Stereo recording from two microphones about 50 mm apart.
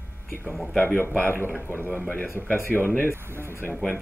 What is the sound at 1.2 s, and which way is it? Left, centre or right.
Speech, left.